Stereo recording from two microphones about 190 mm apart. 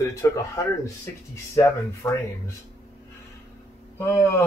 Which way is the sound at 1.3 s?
20° left (ahead or behind).